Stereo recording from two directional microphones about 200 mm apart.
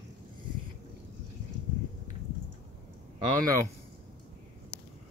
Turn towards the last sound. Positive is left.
turn(degrees=-20)  # may be behind; listen again after turning